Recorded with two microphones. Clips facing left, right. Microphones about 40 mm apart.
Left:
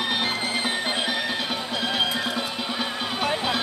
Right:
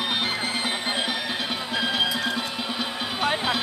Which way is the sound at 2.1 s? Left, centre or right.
Left.